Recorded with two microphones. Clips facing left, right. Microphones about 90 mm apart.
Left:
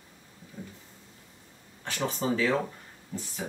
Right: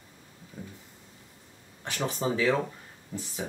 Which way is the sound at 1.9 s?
20° right (ahead or behind).